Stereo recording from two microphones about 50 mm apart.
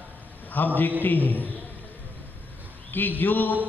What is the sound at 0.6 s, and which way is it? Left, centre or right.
Speech, left.